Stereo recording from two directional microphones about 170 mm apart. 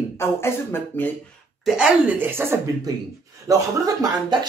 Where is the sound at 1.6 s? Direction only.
5° right (ahead or behind); by 4.3 s 20° right (ahead or behind).